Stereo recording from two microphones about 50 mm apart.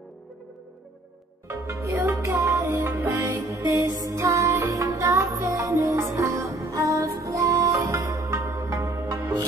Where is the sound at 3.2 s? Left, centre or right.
Right.